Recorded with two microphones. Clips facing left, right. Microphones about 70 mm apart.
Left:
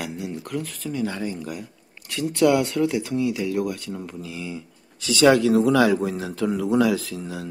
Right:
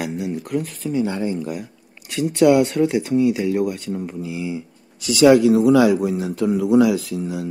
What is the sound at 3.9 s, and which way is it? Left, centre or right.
Speech, centre.